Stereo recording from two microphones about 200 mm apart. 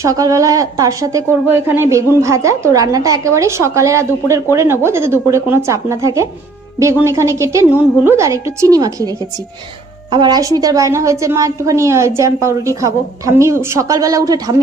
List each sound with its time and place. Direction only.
0.0 s speech: 15° right (ahead or behind)
10.1 s speech: 20° right (ahead or behind)